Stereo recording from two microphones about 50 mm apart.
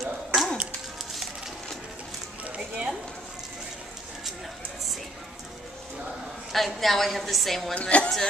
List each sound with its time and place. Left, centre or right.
0.0 s a sound: centre
2.4 s music: right
6.5 s a woman's voice: centre
7.7 s a woman's voice: left